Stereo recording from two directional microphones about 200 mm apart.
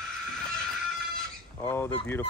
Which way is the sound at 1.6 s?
10° left (ahead or behind).